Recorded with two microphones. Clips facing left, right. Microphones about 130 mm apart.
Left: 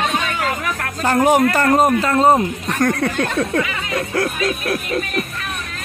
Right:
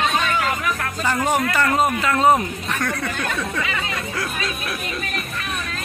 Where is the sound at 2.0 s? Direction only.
30° left (ahead or behind).